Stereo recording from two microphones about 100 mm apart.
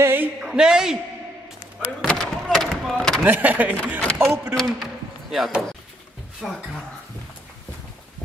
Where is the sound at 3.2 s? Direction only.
15° right (ahead or behind).